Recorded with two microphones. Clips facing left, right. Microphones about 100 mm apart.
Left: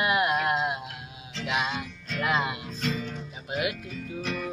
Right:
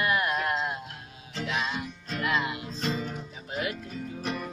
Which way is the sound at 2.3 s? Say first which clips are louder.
Left 2 dB; 20° left (ahead or behind).